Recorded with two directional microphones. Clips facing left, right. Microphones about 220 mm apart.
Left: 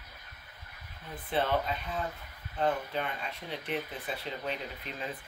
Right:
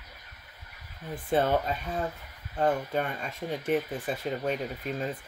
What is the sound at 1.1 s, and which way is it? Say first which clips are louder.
Speech: right 5 dB; 45° right (ahead or behind).